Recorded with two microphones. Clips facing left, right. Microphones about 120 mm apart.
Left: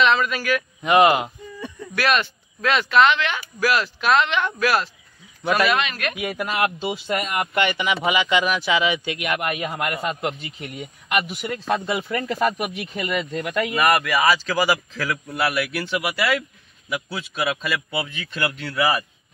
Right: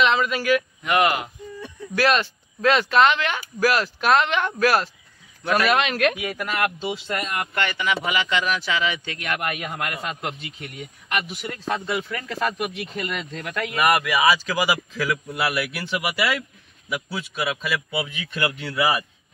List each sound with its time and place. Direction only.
0.0 s speech: 20° right (ahead or behind)
0.8 s speech: 20° left (ahead or behind)
2.0 s speech: 30° right (ahead or behind)
5.4 s speech: 10° left (ahead or behind)
5.7 s a man's voice: 65° right (ahead or behind)
6.3 s speech: 20° left (ahead or behind)
13.7 s a man's voice: 10° right (ahead or behind)